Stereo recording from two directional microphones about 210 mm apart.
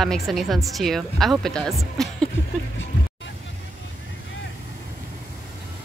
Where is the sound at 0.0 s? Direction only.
Centre (ahead or behind).